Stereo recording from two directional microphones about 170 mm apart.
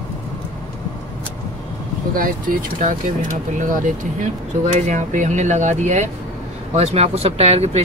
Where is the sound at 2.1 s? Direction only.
55° right (ahead or behind).